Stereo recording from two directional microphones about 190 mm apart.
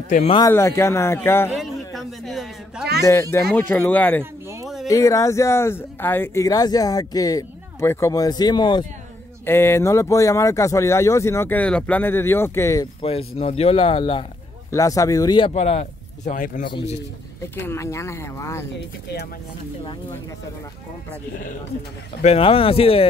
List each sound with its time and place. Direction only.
0.1 s speech: 35° left (ahead or behind)
0.4 s speech: 15° left (ahead or behind)
1.5 s a sound: centre (ahead or behind)
3.1 s speech: 15° left (ahead or behind)
4.2 s a sound: 15° right (ahead or behind)
4.8 s speech: 15° left (ahead or behind)
9.5 s speech: 15° left (ahead or behind)
13.0 s speech: 30° left (ahead or behind)
14.7 s speech: 15° left (ahead or behind); by 16.3 s 35° left (ahead or behind)
16.3 s speech: 45° left (ahead or behind)
16.6 s speech: 30° left (ahead or behind)
17.6 s speech: 15° left (ahead or behind)
22.2 s speech: 30° left (ahead or behind)